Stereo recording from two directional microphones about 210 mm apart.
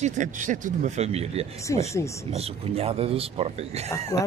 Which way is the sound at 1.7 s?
15° left (ahead or behind).